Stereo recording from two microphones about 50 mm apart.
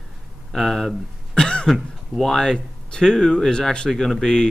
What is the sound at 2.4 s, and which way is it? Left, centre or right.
Speech, centre.